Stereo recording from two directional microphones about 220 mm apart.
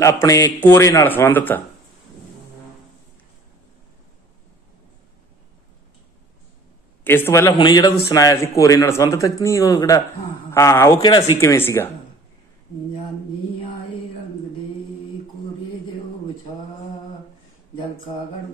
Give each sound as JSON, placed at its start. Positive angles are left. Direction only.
{"t": 0.0, "sound": "a man's voice", "side_deg": 15}
{"t": 7.1, "sound": "a man's voice", "side_deg": 10}